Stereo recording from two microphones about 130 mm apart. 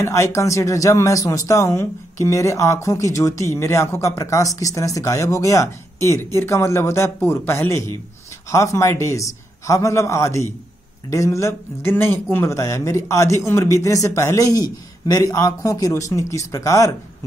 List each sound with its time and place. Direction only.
0.0 s speech: 20° left (ahead or behind)